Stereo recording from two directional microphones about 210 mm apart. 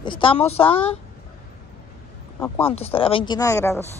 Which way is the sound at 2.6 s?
25° left (ahead or behind).